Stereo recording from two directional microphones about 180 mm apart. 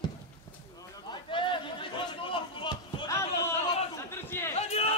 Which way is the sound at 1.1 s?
25° left (ahead or behind).